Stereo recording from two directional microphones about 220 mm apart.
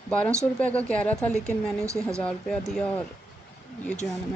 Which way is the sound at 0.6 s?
5° left (ahead or behind).